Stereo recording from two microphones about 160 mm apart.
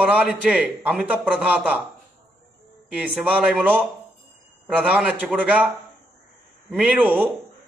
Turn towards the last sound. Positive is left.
turn(degrees=-10)  # may be behind; listen again after turning